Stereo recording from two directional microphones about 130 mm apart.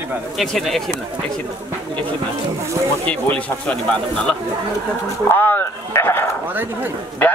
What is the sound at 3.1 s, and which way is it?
A man's voice, 10° left (ahead or behind).